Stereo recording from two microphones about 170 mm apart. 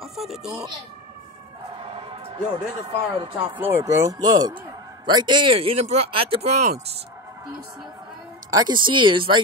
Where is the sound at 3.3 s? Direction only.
10° right (ahead or behind); by 6.7 s 40° right (ahead or behind).